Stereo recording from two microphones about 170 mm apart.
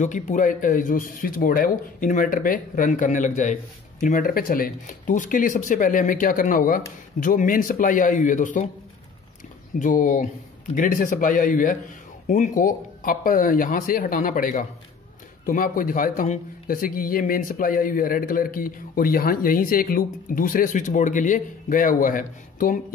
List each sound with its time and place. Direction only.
0.0 s speech: 45° left (ahead or behind)
9.8 s a man's voice: 50° left (ahead or behind)